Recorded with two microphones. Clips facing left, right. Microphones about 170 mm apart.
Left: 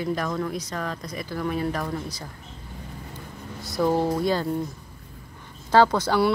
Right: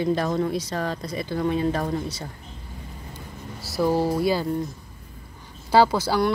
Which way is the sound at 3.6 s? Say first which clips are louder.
Right 1 dB; 5° right (ahead or behind).